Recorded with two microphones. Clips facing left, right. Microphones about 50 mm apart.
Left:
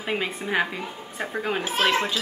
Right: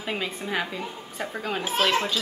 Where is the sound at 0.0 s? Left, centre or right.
Centre.